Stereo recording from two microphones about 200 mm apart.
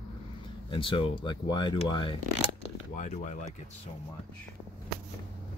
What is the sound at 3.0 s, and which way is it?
Speech, 35° left (ahead or behind).